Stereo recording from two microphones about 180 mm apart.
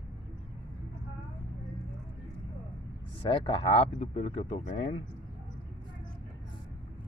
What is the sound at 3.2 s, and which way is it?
Speech, 30° left (ahead or behind).